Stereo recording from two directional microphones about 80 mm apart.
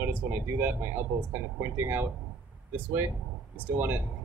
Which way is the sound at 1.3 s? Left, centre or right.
Right.